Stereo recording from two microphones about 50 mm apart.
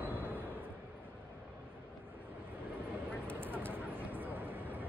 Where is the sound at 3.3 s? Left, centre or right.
Right.